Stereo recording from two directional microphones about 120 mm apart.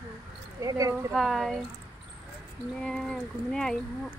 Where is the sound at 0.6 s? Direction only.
25° right (ahead or behind).